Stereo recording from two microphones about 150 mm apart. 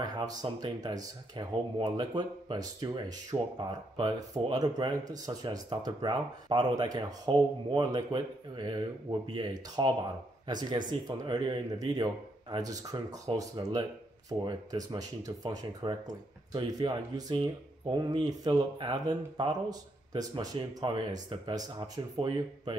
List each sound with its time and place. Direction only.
0.0 s speech: 25° right (ahead or behind)